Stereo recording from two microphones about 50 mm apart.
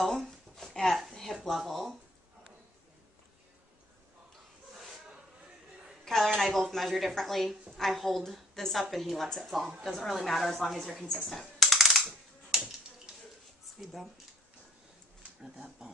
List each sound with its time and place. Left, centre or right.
0.0 s a sound: centre
6.0 s a sound: centre
7.7 s a woman's voice: centre
11.2 s coin: centre
12.1 s finger snapping: centre
15.4 s speech: centre